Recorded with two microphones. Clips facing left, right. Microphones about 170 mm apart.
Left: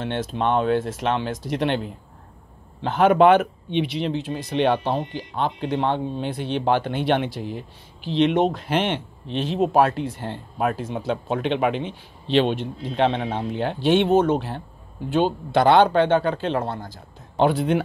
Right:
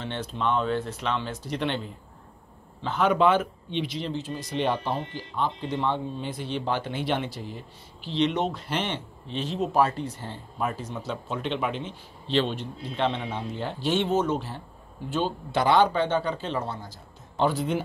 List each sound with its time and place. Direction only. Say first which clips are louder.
0.0 s speech: left 5 dB; 60° left (ahead or behind); by 1.0 s 75° left (ahead or behind)
1.0 s speech: left 6 dB; 65° left (ahead or behind)
2.8 s speech: left 6 dB; 60° left (ahead or behind)
8.2 s speech: left 6 dB; 55° left (ahead or behind)